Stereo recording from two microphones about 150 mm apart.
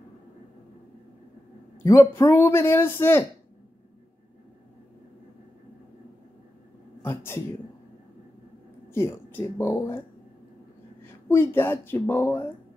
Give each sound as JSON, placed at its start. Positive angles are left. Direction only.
{"t": 1.8, "sound": "a man's voice", "side_deg": 20}
{"t": 7.0, "sound": "speech", "side_deg": 15}
{"t": 8.9, "sound": "a man's voice", "side_deg": 15}
{"t": 11.2, "sound": "a man's voice", "side_deg": 15}